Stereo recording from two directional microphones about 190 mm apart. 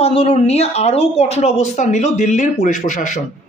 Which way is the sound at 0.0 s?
30° left (ahead or behind).